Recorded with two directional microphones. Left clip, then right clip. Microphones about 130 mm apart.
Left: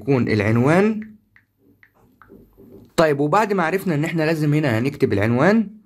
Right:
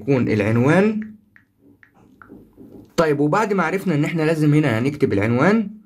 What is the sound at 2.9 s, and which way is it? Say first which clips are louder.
Speech: left 1 dB; 40° left (ahead or behind).